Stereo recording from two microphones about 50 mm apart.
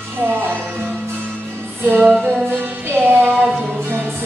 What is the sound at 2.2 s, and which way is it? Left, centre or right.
Music, right.